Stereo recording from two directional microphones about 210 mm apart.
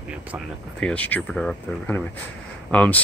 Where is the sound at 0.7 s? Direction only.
5° left (ahead or behind).